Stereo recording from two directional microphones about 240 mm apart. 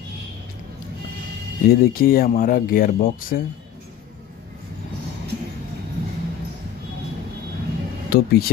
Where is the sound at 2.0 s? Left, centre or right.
Left.